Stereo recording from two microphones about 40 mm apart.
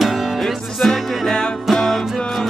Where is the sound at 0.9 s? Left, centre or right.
Centre.